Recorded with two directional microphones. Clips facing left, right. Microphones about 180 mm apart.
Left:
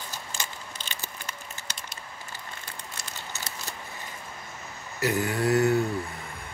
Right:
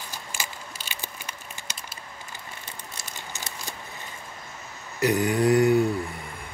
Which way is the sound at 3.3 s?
15° right (ahead or behind).